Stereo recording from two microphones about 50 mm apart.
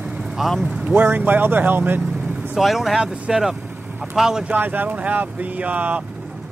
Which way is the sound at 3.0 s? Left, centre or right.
Centre.